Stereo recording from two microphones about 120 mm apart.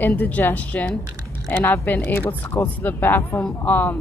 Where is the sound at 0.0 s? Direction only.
15° left (ahead or behind).